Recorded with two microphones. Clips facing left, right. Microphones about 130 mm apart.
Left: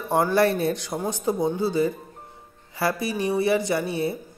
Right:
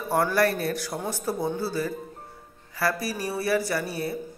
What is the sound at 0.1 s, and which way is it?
Speech, 25° left (ahead or behind).